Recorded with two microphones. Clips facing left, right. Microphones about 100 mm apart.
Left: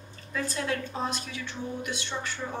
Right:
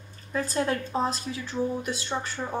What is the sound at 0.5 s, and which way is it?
A woman's voice, 35° right (ahead or behind).